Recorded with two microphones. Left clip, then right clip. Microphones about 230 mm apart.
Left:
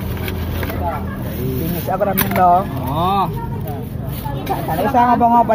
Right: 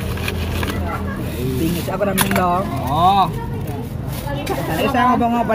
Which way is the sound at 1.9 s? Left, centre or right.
Left.